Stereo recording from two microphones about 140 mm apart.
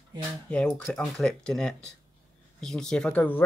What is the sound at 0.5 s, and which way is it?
Speech, 5° left (ahead or behind).